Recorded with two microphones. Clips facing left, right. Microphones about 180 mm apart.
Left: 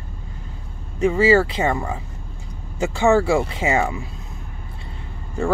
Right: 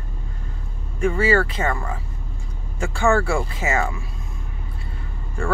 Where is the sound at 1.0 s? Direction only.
25° left (ahead or behind).